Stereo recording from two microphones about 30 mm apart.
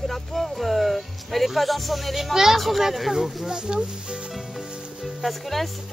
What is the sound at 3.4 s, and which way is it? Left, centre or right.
Speech, right.